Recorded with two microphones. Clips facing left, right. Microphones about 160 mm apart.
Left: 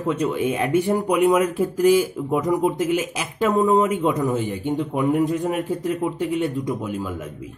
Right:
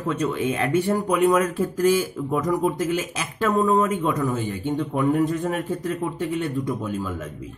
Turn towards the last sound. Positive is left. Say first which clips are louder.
# left 1 dB
turn(degrees=10)  # may be behind; listen again after turning